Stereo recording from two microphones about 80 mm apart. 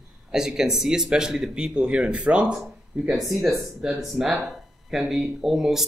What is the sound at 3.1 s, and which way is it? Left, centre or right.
Speech, centre.